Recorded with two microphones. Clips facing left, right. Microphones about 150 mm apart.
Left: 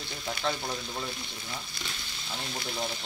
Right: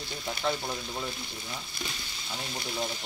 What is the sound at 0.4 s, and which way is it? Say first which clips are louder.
Speech: right 1 dB; 5° right (ahead or behind).